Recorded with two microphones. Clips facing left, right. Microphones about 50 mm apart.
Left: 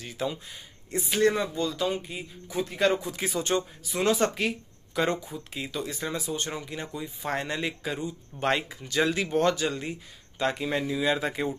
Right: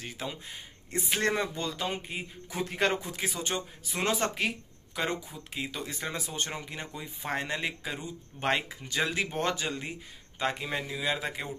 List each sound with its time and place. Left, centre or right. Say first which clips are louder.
0.5 s speech: left 3 dB; right
3.2 s speech: left 5 dB; centre
3.9 s speech: left 5 dB; right
4.2 s speech: left 4 dB; centre
5.7 s speech: left 8 dB; right
6.7 s speech: left 4 dB; centre